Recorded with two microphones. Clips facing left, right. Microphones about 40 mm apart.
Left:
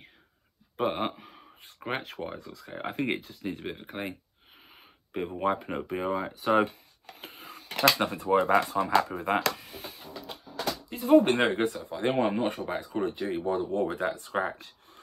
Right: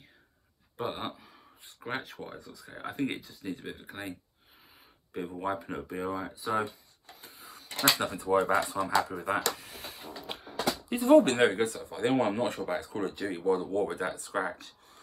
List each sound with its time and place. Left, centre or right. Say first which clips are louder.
0.7 s speech: left 6 dB; left
1.1 s a sound: left 4 dB; left
1.8 s speech: left 3 dB; left
5.1 s speech: left 5 dB; left
10.2 s a sound: right 2 dB; right
11.4 s speech: even; left
12.2 s speech: left 2 dB; centre; by 14.4 s left